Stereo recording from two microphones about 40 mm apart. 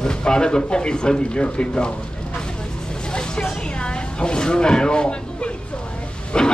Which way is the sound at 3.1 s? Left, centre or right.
Left.